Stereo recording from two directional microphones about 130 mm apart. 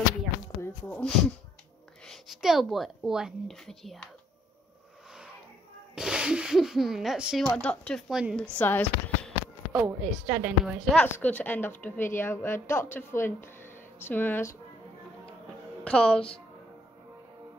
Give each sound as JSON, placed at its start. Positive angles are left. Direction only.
{"t": 0.6, "sound": "a sound", "side_deg": 15}
{"t": 2.0, "sound": "a woman's voice", "side_deg": -5}
{"t": 5.9, "sound": "a woman's voice", "side_deg": -5}
{"t": 7.4, "sound": "a woman's voice", "side_deg": 10}
{"t": 8.1, "sound": "a woman's voice", "side_deg": -5}
{"t": 8.4, "sound": "speech", "side_deg": 15}
{"t": 9.7, "sound": "speech", "side_deg": -10}
{"t": 11.1, "sound": "a woman's voice", "side_deg": 15}
{"t": 15.8, "sound": "a woman's voice", "side_deg": 5}